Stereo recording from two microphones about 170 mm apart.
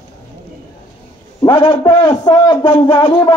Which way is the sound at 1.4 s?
30° left (ahead or behind).